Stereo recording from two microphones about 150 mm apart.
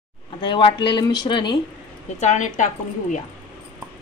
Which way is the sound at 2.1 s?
55° left (ahead or behind).